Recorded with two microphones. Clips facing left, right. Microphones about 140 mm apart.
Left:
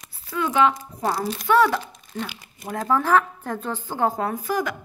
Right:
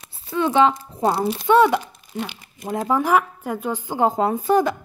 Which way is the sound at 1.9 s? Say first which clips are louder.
Right 2 dB; 5° right (ahead or behind).